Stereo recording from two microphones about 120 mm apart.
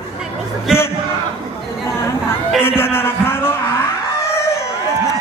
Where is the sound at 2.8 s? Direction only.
20° left (ahead or behind).